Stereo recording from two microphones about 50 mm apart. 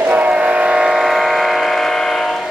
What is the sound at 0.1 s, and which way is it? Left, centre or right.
Train, right.